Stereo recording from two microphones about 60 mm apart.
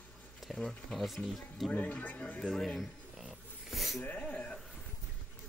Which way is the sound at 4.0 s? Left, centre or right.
Left.